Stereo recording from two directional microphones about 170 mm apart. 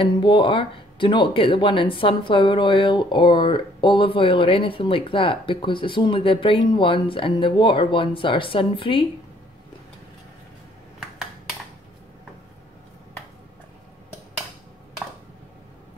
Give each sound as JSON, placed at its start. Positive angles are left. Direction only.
{"t": 0.0, "sound": "speech", "side_deg": 30}